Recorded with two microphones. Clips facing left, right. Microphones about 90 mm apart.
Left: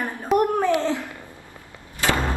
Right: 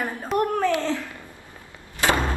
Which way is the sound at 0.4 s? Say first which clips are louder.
Even; 20° left (ahead or behind).